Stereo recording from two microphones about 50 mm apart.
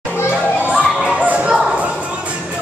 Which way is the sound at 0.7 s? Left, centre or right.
Right.